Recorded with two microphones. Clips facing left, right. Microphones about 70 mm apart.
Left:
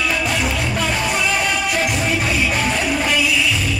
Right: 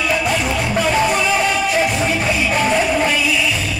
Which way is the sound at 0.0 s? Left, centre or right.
Centre.